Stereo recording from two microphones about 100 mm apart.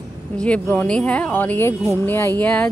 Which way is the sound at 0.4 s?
15° left (ahead or behind).